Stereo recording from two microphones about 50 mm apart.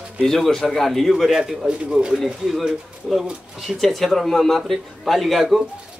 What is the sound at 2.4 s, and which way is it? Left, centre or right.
Speech, centre.